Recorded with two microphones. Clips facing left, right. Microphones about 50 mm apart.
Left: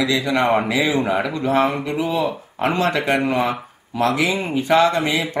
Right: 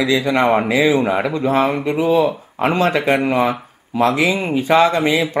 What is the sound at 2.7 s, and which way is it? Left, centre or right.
Speech, right.